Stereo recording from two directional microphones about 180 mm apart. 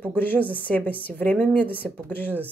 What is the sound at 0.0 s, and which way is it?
A woman's voice, 10° left (ahead or behind).